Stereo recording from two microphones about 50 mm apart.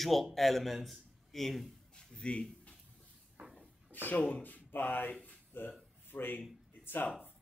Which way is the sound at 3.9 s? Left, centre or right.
Left.